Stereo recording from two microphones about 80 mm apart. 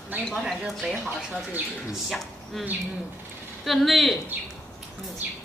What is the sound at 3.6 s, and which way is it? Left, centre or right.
Speech, centre.